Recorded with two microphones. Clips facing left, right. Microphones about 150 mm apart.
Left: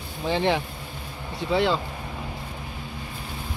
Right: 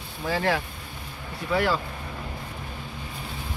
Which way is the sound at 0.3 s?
20° left (ahead or behind).